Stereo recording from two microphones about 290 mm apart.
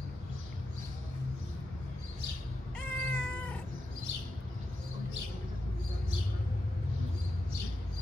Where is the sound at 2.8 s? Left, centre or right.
Centre.